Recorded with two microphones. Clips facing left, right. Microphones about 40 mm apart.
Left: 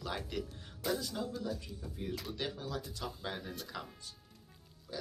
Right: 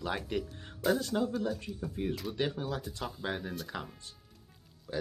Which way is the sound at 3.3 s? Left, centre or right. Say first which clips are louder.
Right 5 dB; centre.